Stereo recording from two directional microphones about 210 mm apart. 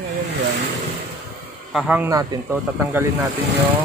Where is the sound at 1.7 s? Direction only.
Centre (ahead or behind).